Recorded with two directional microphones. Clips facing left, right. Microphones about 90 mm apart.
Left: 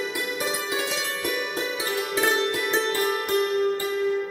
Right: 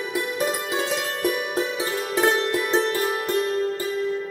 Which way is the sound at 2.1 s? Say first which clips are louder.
Right 3 dB; 30° right (ahead or behind).